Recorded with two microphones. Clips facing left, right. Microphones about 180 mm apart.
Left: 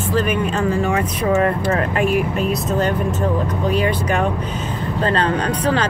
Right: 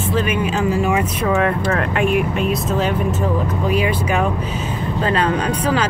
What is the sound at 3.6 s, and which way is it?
Speech, 10° right (ahead or behind).